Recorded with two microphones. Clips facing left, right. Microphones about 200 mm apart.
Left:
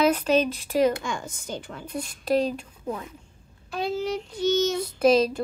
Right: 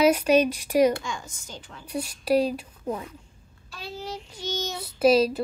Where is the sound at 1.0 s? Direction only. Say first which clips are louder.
Left 4 dB; 55° left (ahead or behind).